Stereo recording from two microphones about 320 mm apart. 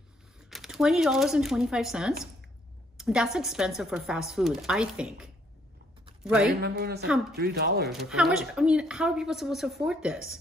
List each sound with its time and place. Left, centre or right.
0.5 s a woman's voice: centre
6.5 s a woman's voice: right
7.9 s a woman's voice: centre